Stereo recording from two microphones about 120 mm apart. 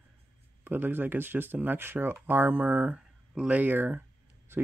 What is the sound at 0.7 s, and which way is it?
Speech, 15° right (ahead or behind).